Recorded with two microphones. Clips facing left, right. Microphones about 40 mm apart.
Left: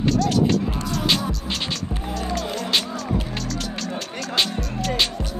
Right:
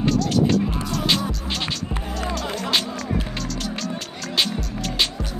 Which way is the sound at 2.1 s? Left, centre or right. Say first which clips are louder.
Left 1 dB; centre.